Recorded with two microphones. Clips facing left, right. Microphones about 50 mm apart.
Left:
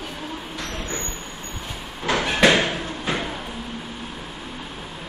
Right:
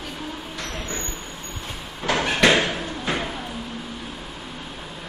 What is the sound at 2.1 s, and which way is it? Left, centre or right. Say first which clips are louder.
Slam: even; centre.